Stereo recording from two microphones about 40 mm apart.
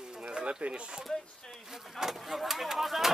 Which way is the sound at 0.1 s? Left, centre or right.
Centre.